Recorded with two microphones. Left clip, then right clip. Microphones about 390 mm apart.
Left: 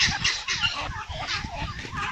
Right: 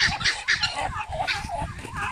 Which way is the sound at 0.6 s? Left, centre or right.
Right.